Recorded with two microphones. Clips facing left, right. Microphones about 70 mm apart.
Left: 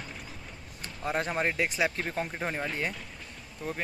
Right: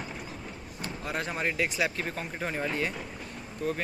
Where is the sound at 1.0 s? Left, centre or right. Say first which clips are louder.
Left 3 dB; left.